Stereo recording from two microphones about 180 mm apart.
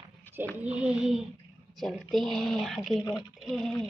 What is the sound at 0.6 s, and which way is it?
Speech, 5° right (ahead or behind).